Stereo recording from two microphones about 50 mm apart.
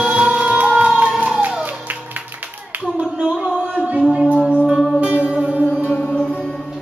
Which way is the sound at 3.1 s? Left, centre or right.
Centre.